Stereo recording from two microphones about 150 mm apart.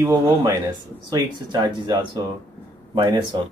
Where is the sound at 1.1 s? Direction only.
30° right (ahead or behind).